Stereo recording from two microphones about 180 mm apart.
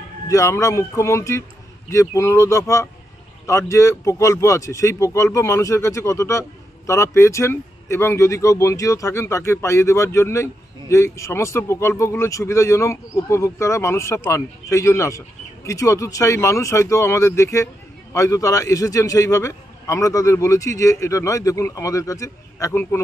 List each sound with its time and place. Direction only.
0.3 s a man's voice: 20° left (ahead or behind)